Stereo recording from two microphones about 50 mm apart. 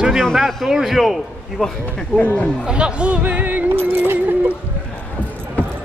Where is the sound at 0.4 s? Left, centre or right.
Centre.